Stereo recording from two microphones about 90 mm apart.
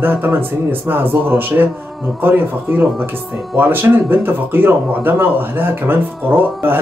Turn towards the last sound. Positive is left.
turn(degrees=-25)  # may be behind; listen again after turning